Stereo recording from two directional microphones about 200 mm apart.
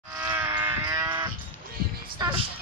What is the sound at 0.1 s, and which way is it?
Livestock, 10° right (ahead or behind).